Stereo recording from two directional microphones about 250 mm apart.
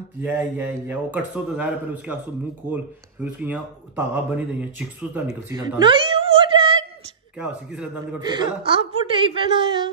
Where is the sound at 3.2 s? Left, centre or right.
Centre.